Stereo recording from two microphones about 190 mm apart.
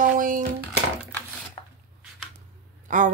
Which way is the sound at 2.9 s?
40° right (ahead or behind).